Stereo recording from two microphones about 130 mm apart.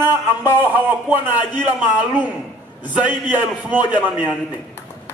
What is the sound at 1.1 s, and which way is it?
A man's voice, 15° right (ahead or behind).